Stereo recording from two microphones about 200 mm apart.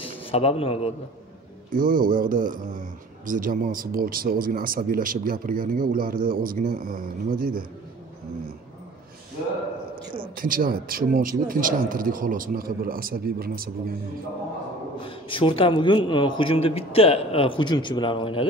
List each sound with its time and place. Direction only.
0.0 s a man's voice: 25° left (ahead or behind)
1.7 s speech: 45° right (ahead or behind)
10.3 s speech: 45° right (ahead or behind)
15.0 s a man's voice: 25° left (ahead or behind)